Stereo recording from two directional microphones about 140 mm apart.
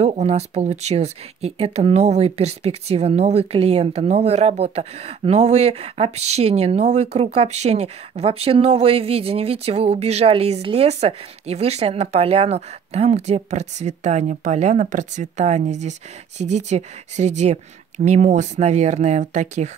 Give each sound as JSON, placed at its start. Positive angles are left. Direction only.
{"t": 0.0, "sound": "speech", "side_deg": -50}